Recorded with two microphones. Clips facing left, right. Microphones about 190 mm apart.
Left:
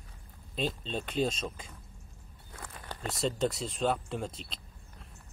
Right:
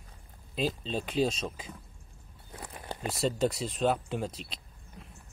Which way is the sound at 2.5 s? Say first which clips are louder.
Right 4 dB; 20° right (ahead or behind).